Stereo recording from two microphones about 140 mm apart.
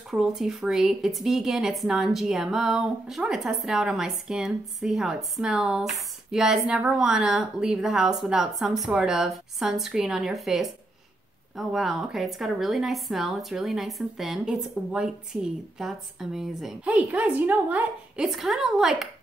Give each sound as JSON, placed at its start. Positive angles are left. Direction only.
{"t": 0.1, "sound": "a woman's voice", "side_deg": -5}